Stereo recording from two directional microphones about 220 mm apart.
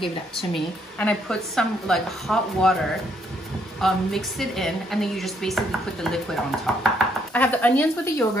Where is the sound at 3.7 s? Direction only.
Centre (ahead or behind).